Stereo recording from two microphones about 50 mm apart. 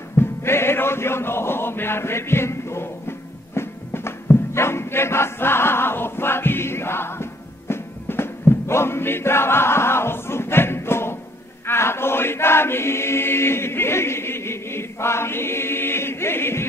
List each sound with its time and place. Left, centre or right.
0.1 s music: left
11.6 s choir: left